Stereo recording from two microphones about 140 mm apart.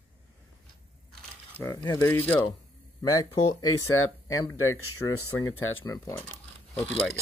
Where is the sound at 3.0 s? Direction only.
25° left (ahead or behind).